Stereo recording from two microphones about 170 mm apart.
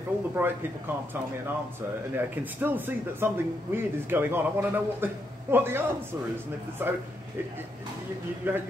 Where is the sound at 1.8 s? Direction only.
10° right (ahead or behind).